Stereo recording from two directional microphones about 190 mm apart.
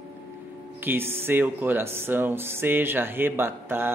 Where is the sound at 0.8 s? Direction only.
10° right (ahead or behind).